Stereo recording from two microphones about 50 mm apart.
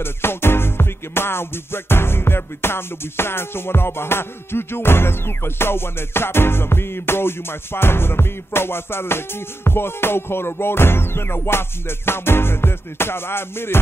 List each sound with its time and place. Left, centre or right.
0.0 s music: left